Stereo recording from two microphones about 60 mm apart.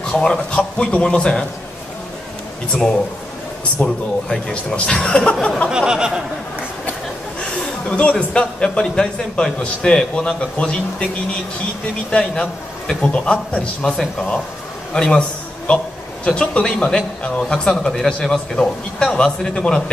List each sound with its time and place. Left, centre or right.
0.0 s a man's voice: centre
3.8 s a man's voice: centre
5.7 s a sound: centre
7.9 s a man's voice: centre
12.1 s a man's voice: centre